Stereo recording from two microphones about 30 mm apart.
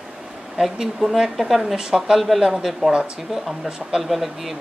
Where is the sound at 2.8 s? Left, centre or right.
Right.